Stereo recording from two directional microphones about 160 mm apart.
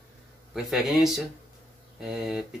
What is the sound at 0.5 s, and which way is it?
Speech, centre (ahead or behind).